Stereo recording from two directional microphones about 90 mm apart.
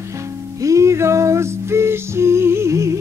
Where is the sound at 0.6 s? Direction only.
35° right (ahead or behind).